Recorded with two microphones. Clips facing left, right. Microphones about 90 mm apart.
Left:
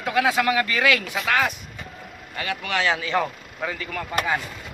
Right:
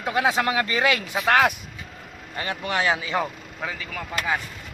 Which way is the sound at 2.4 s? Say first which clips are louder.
Even; 25° right (ahead or behind).